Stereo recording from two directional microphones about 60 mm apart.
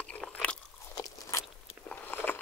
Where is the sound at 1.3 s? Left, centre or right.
Left.